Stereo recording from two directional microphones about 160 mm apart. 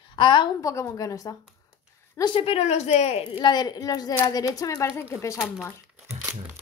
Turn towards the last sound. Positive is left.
turn(degrees=-10)  # may be behind; listen again after turning